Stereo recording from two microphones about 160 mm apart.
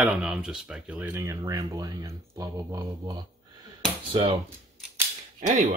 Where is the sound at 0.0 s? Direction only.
5° right (ahead or behind); by 4.4 s 30° right (ahead or behind).